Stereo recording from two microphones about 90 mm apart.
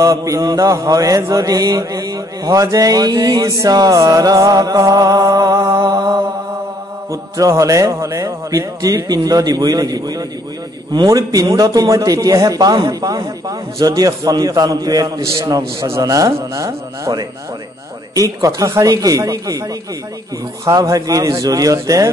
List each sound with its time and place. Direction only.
0.0 s a man's voice: 40° right (ahead or behind)
1.3 s mantra: 40° right (ahead or behind)
7.1 s mantra: 35° right (ahead or behind)
15.3 s a man's voice: 40° right (ahead or behind)
20.6 s a man's voice: 40° right (ahead or behind)